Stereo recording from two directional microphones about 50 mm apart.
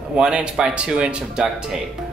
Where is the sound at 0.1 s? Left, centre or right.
Centre.